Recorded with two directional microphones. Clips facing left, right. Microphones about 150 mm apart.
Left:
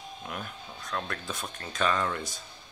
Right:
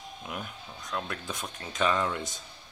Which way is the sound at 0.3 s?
15° right (ahead or behind).